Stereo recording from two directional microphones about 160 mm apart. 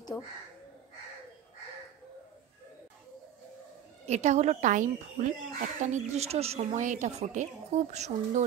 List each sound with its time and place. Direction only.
4.0 s speech: 45° right (ahead or behind)